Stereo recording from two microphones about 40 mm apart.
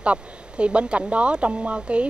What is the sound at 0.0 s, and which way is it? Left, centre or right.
Speech, right.